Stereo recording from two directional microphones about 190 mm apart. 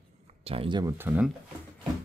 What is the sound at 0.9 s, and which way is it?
Speech, 10° right (ahead or behind).